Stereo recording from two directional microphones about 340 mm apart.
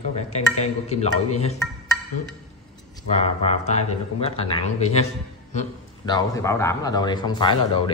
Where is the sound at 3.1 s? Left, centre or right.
Centre.